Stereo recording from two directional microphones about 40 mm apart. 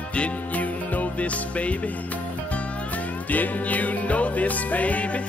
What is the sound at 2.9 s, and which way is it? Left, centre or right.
Music, left.